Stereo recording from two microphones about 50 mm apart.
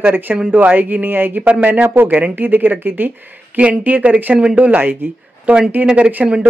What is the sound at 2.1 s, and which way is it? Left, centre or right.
Speech, right.